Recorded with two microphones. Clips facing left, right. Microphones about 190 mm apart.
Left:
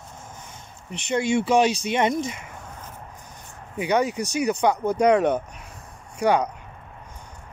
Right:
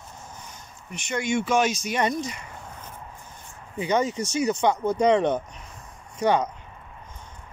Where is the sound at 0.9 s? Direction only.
30° left (ahead or behind).